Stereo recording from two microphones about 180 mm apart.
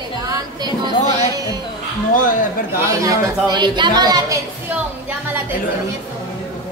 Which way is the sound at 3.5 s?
25° right (ahead or behind).